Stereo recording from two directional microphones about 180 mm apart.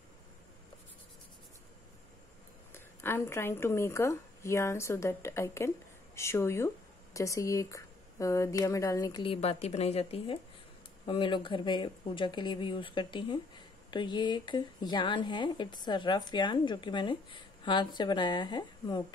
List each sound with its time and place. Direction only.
2.7 s a woman's voice: 15° left (ahead or behind)